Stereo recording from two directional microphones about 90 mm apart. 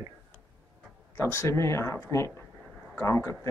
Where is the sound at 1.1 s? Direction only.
30° left (ahead or behind).